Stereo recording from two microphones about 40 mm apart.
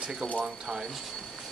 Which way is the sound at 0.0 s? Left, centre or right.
Centre.